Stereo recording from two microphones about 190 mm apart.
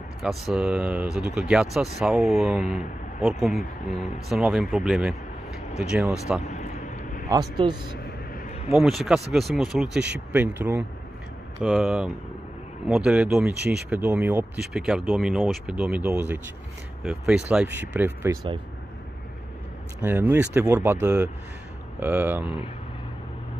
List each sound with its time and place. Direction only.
0.2 s speech: centre (ahead or behind)
6.4 s vehicle: 40° left (ahead or behind)
7.2 s speech: 20° right (ahead or behind)
8.7 s speech: centre (ahead or behind)
20.0 s speech: 10° right (ahead or behind)